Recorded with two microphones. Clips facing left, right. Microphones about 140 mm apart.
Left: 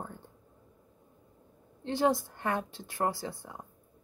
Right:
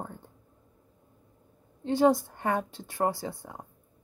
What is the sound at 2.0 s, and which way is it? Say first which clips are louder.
A woman's voice: right 5 dB; 45° right (ahead or behind).